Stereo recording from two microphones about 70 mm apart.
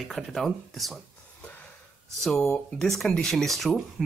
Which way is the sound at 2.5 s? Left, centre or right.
Centre.